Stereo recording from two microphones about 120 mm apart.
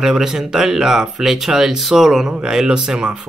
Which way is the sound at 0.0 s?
5° right (ahead or behind).